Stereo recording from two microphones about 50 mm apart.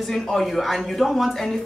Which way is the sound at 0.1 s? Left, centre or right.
Centre.